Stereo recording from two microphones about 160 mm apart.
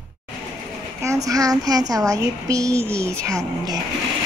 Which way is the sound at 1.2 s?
20° right (ahead or behind).